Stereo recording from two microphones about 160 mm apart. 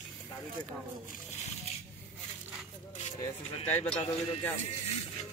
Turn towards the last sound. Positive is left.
turn(degrees=10)  # may be behind; listen again after turning